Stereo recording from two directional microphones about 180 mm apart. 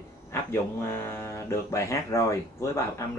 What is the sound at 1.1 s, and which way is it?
Speech, 15° left (ahead or behind).